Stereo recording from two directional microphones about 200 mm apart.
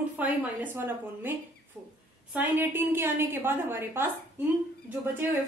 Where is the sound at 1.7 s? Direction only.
Centre (ahead or behind).